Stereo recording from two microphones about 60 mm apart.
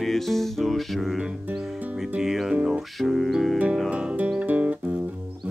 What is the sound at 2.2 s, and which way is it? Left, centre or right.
Music, centre.